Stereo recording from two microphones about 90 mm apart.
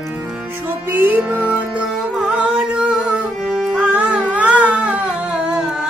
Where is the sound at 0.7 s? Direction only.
20° right (ahead or behind).